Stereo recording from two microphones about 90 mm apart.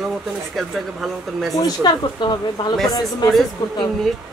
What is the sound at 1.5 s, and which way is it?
Speech, 50° left (ahead or behind).